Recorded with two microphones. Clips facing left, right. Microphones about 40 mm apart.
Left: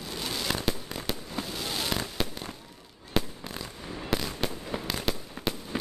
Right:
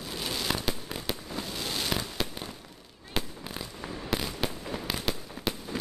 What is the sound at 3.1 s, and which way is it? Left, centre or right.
Fireworks, centre.